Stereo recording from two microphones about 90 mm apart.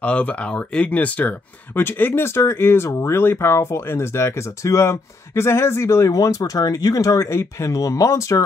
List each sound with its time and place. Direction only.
0.0 s speech: 15° left (ahead or behind); by 8.4 s 35° left (ahead or behind)